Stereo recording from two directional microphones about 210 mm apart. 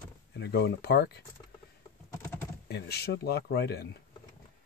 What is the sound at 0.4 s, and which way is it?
Speech, 50° left (ahead or behind).